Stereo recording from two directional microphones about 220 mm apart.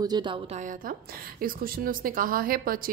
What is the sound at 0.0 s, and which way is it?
A woman's voice, 20° right (ahead or behind).